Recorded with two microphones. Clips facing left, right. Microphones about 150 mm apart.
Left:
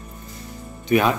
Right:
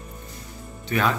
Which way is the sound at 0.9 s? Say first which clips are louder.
Left 5 dB; 15° left (ahead or behind).